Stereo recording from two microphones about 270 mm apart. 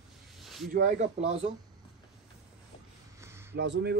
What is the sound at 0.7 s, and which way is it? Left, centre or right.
Speech, right.